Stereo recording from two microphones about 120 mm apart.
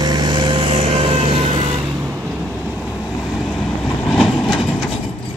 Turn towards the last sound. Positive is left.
turn(degrees=5)  # may be behind; listen again after turning